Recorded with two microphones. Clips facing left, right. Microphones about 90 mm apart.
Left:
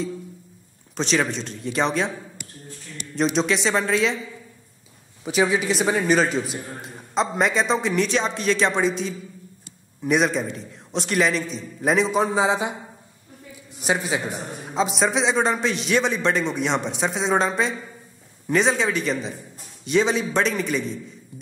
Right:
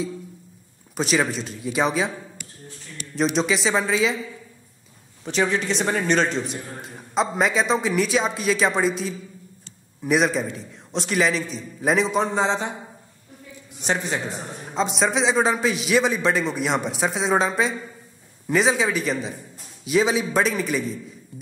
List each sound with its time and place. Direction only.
0.9 s a man's voice: 5° right (ahead or behind)
3.3 s a man's voice: centre (ahead or behind)
5.2 s a man's voice: 5° left (ahead or behind)
13.7 s a man's voice: 5° left (ahead or behind)